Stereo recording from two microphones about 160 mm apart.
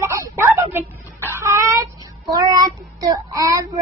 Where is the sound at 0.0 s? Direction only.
15° right (ahead or behind).